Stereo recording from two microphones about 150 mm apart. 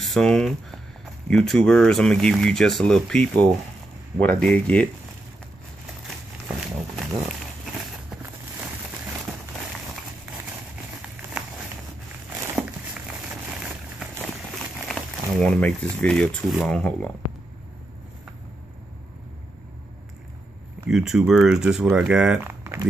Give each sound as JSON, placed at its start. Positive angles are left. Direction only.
{"t": 0.0, "sound": "speech", "side_deg": 0}
{"t": 14.9, "sound": "speech", "side_deg": 5}
{"t": 20.9, "sound": "speech", "side_deg": -5}